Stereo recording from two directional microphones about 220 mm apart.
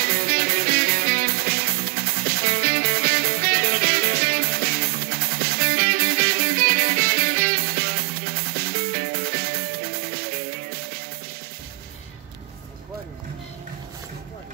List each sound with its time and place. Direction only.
0.0 s music: 45° right (ahead or behind)